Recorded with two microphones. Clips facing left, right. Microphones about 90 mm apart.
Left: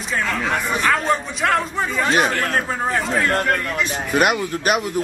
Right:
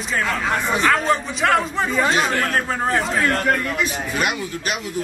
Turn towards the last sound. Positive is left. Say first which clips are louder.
# left 6 dB
turn(degrees=55)  # may be behind; listen again after turning